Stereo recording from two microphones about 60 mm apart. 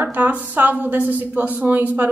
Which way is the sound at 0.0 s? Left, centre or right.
Right.